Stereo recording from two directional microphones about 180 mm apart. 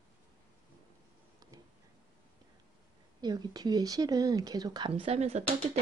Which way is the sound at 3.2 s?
20° right (ahead or behind).